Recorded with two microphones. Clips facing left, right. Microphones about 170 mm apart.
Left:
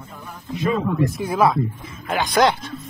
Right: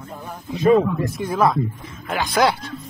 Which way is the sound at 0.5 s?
45° right (ahead or behind).